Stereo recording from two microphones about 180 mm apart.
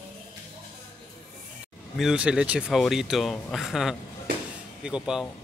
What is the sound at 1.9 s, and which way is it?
Speech, 5° right (ahead or behind).